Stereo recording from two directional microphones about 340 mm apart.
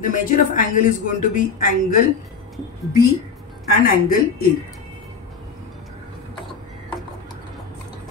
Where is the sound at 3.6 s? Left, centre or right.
Left.